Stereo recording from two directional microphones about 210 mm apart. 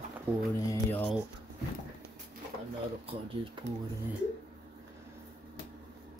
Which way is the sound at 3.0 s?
25° right (ahead or behind).